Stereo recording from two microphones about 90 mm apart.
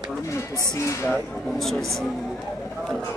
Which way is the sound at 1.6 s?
5° left (ahead or behind).